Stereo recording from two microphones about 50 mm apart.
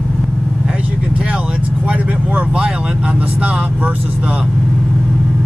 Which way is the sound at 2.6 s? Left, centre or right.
Centre.